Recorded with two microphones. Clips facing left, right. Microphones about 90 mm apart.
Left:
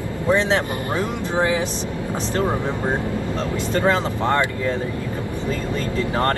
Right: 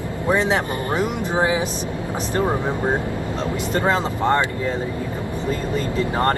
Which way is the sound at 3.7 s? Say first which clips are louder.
Left 1 dB; 20° right (ahead or behind).